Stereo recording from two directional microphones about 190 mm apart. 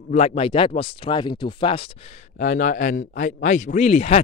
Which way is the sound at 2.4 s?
40° left (ahead or behind).